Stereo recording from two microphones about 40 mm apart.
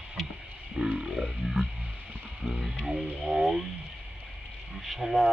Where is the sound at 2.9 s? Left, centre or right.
Centre.